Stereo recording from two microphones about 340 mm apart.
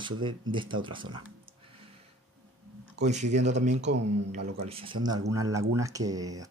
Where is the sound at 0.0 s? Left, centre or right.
Centre.